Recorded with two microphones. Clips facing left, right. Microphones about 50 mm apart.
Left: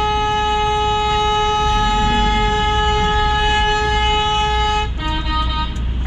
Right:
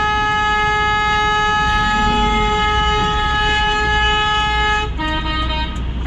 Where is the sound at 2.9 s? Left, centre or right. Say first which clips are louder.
Even; centre.